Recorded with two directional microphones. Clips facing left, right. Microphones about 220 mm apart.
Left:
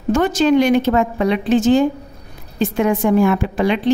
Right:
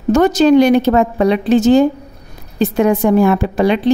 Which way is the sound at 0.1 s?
40° right (ahead or behind).